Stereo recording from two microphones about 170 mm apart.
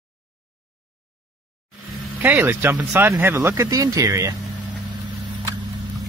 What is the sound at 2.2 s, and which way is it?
Speech, 10° right (ahead or behind).